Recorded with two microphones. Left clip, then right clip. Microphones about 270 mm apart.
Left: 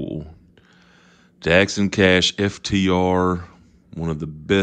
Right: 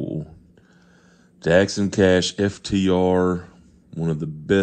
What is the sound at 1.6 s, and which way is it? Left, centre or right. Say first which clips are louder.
Speech: left 1 dB; left.